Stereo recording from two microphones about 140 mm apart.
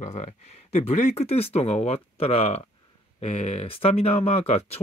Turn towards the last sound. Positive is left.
turn(degrees=45)  # may be behind; listen again after turning